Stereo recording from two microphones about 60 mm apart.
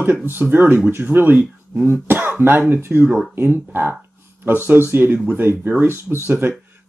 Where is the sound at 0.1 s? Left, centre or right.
Right.